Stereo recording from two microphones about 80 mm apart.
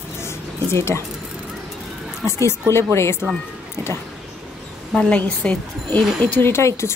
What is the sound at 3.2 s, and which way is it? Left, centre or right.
Speech, right.